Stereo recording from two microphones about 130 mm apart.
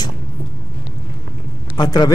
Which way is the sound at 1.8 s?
35° left (ahead or behind).